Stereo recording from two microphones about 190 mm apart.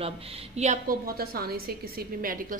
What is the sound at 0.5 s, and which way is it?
A woman's voice, 45° right (ahead or behind).